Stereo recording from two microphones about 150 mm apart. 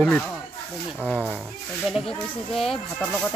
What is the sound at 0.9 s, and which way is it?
Speech, 10° right (ahead or behind).